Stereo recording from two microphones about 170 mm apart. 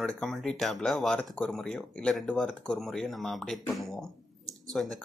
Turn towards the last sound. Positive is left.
turn(degrees=5)  # may be behind; listen again after turning